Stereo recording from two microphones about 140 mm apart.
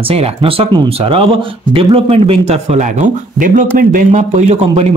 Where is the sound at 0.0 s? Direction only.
45° right (ahead or behind).